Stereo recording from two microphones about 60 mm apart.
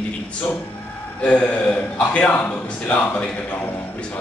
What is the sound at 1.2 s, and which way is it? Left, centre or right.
A man's voice, left.